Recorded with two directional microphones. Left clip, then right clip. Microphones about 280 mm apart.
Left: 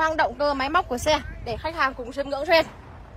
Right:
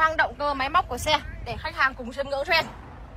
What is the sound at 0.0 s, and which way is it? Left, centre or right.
A woman's voice, left.